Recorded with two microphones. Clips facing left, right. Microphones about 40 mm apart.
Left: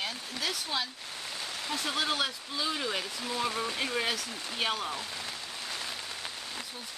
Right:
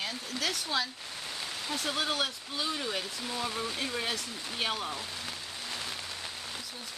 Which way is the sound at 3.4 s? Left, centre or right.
Centre.